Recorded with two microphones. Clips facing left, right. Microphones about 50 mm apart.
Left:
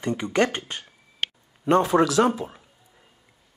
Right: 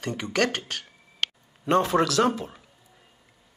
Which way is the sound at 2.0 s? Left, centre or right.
Centre.